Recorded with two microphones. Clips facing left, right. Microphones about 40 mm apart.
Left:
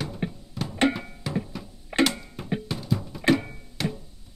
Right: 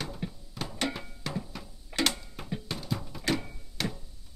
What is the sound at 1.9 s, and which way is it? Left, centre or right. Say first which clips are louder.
Creak: left 7 dB; left.